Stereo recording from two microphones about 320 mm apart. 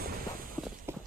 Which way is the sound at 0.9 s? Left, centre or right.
Centre.